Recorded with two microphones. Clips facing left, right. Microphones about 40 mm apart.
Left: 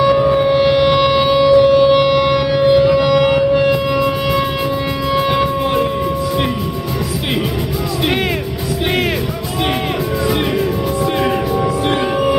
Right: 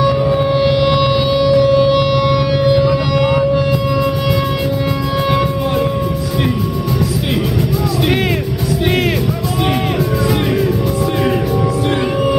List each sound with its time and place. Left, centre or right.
0.0 s music: centre
3.5 s civil defense siren: left
5.1 s civil defense siren: centre